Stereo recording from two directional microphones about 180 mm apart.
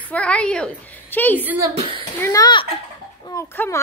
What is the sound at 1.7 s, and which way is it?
Speech, 35° right (ahead or behind).